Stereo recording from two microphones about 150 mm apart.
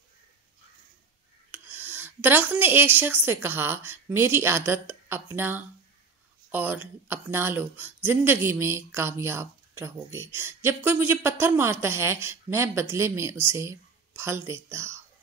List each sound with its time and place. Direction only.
1.5 s a woman's voice: 10° right (ahead or behind)